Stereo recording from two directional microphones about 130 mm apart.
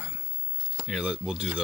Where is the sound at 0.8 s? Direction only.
5° right (ahead or behind).